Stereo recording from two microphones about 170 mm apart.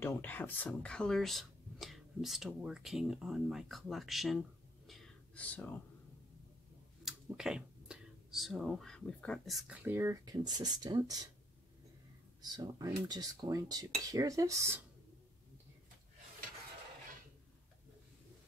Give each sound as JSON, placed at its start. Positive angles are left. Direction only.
{"t": 0.0, "sound": "speech", "side_deg": 10}
{"t": 7.1, "sound": "speech", "side_deg": -5}
{"t": 9.8, "sound": "speech", "side_deg": -15}
{"t": 12.4, "sound": "speech", "side_deg": -20}